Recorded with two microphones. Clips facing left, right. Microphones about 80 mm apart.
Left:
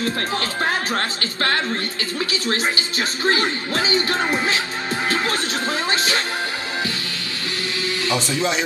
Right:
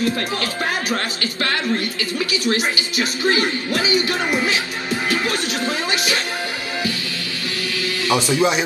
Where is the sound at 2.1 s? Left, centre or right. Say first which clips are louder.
Right 3 dB; left.